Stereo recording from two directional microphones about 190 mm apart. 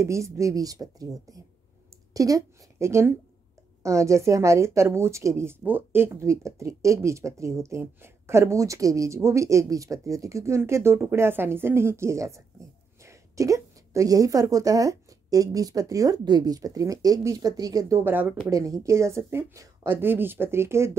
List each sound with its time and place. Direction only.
0.0 s a woman's voice: 15° right (ahead or behind)
2.1 s a woman's voice: 20° right (ahead or behind)